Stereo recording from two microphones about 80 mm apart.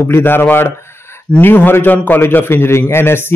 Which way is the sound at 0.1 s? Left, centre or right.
Left.